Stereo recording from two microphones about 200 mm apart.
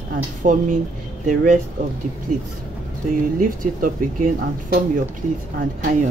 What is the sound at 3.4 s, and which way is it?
Speech, 45° right (ahead or behind).